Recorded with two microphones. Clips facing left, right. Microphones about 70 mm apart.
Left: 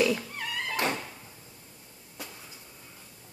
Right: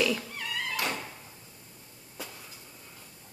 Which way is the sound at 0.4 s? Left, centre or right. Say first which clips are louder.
Left 2 dB; left.